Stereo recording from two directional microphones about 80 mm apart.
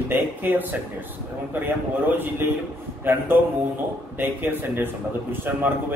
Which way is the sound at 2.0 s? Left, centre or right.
Right.